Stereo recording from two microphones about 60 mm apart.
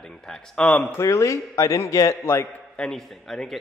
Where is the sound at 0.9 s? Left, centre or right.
Left.